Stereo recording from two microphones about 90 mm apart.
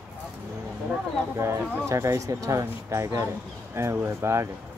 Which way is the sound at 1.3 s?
30° right (ahead or behind).